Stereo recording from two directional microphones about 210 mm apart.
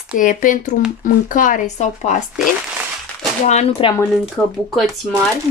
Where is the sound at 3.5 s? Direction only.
30° left (ahead or behind).